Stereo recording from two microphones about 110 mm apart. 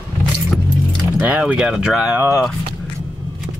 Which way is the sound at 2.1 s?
20° right (ahead or behind).